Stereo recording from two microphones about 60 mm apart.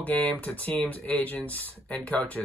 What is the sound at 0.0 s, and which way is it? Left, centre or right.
Speech, left.